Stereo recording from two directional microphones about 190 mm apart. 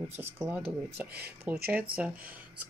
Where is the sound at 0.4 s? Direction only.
10° right (ahead or behind).